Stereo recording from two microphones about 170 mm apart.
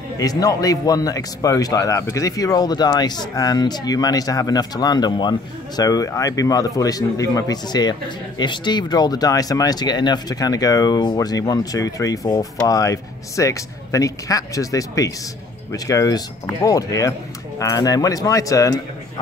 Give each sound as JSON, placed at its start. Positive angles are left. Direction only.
{"t": 0.2, "sound": "speech", "side_deg": 20}